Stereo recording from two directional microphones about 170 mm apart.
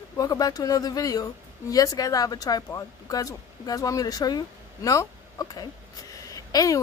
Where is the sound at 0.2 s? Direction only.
20° left (ahead or behind).